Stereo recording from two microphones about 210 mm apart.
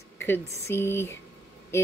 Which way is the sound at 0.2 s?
10° left (ahead or behind).